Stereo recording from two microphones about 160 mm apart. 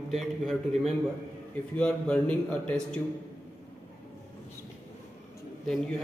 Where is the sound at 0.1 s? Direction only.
Centre (ahead or behind).